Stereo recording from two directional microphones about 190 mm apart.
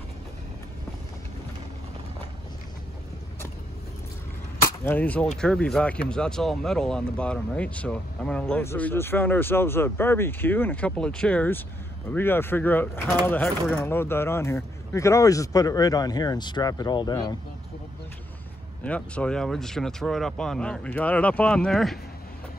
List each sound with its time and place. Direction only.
4.6 s speech: 10° left (ahead or behind)
18.9 s speech: 5° left (ahead or behind)